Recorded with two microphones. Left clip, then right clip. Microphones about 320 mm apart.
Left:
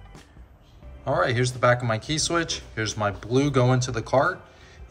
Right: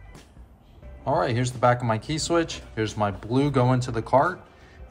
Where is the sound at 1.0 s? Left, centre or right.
Centre.